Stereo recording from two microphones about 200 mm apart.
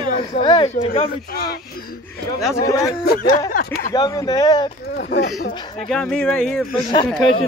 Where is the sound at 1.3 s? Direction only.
50° left (ahead or behind).